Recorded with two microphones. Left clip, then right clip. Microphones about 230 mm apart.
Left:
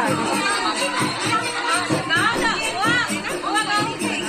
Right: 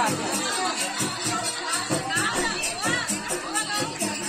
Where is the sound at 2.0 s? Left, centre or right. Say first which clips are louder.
Left 7 dB; left.